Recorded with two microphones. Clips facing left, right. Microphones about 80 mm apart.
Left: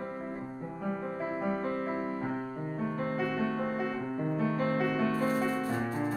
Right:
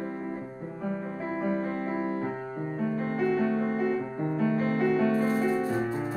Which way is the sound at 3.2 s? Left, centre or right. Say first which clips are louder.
Right 7 dB; centre.